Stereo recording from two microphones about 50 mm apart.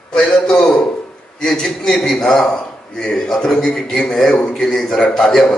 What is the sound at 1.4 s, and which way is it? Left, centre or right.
A man's voice, centre.